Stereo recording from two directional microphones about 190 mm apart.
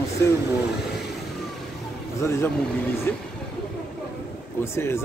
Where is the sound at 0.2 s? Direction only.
15° left (ahead or behind).